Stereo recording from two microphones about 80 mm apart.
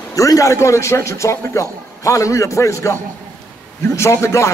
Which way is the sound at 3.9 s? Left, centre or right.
Left.